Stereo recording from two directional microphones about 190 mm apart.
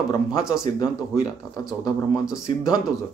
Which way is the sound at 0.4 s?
5° right (ahead or behind).